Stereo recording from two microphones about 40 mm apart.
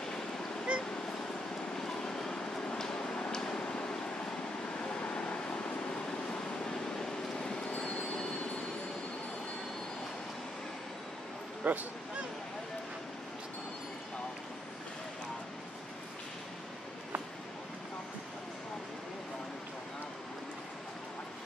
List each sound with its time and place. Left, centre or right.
0.7 s honk: right
1.8 s a sound: centre
3.6 s vehicle: left
11.6 s speech: right